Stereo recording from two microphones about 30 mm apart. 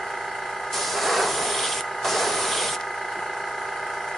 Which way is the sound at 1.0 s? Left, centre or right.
Centre.